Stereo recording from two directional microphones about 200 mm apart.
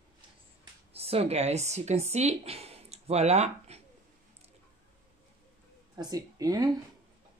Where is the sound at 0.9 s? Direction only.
30° right (ahead or behind).